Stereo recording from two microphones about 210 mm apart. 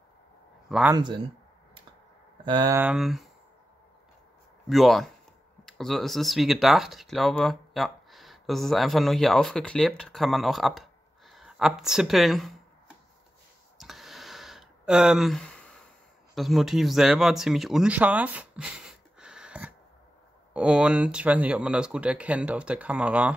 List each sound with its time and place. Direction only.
0.7 s speech: 5° right (ahead or behind)
0.9 s speech: 20° right (ahead or behind)
2.4 s speech: 20° right (ahead or behind)
2.8 s speech: centre (ahead or behind)
4.6 s speech: centre (ahead or behind)
13.7 s a sound: centre (ahead or behind)
16.3 s speech: centre (ahead or behind)
19.1 s a sound: 5° right (ahead or behind)
20.5 s speech: 5° right (ahead or behind)